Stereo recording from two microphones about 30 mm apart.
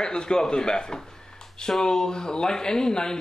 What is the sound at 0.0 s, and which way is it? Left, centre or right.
Speech, left.